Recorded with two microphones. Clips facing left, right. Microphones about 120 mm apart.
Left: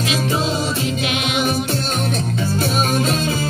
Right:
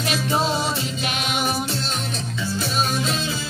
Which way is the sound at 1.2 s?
60° left (ahead or behind).